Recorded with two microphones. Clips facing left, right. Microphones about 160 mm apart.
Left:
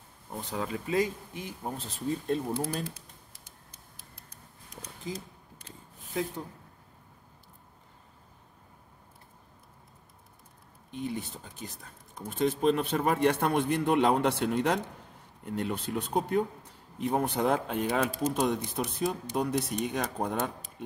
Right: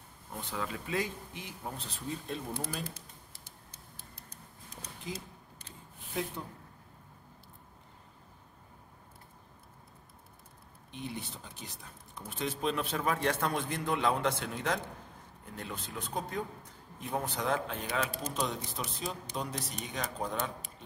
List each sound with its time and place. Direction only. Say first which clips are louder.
0.3 s speech: left 4 dB; 35° left (ahead or behind)
10.9 s speech: left 6 dB; 45° left (ahead or behind)